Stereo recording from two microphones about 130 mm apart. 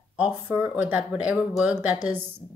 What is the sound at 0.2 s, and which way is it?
Speech, 15° right (ahead or behind).